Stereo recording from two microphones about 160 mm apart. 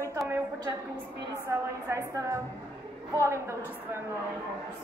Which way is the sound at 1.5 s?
15° right (ahead or behind).